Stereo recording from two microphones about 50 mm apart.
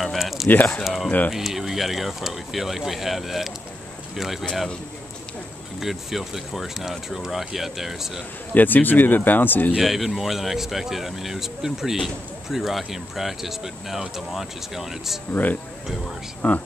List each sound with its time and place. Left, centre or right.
0.0 s a sound: centre
0.8 s a man's voice: centre
5.8 s a man's voice: centre
8.5 s speech: left
9.8 s a man's voice: centre
16.4 s speech: left